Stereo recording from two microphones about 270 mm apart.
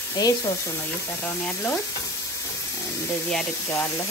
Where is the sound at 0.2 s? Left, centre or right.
Centre.